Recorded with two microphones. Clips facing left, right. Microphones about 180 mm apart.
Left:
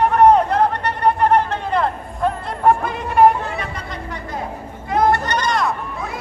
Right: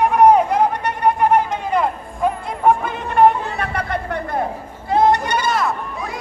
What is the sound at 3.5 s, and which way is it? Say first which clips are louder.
Chatter: right 5 dB; 60° right (ahead or behind).